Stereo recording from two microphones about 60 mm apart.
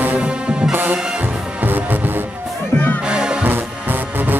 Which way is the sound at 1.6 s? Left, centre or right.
Right.